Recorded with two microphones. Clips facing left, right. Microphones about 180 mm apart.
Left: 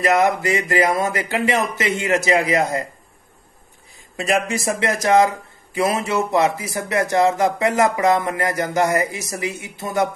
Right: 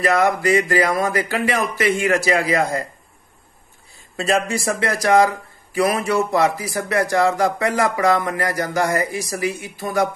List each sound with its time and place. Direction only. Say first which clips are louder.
0.0 s speech: even; 20° left (ahead or behind)
4.2 s speech: right 1 dB; 20° left (ahead or behind)